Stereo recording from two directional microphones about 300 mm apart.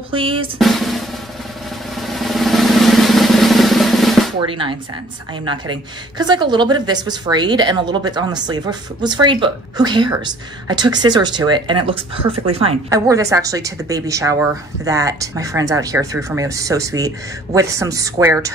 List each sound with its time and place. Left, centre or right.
0.1 s a woman's voice: centre
0.6 s drum: centre
4.4 s a woman's voice: centre